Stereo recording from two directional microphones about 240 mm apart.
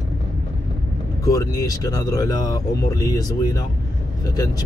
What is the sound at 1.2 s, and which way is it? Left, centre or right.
Speech, centre.